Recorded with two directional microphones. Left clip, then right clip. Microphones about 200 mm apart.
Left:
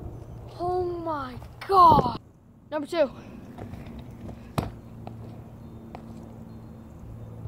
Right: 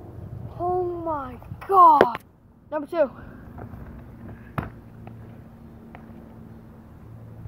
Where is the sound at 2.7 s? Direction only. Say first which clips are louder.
Right 2 dB; centre (ahead or behind).